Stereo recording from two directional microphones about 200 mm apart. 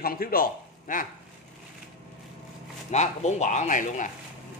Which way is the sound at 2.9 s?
35° left (ahead or behind).